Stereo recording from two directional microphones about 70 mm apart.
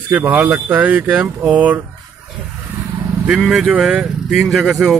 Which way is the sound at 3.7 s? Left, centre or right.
Centre.